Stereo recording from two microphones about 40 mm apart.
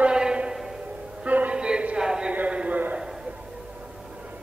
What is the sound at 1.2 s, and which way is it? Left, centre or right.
Music, right.